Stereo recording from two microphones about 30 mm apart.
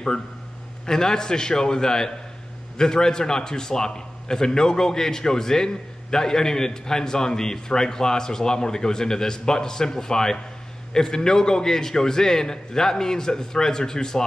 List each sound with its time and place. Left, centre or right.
0.8 s a man's voice: centre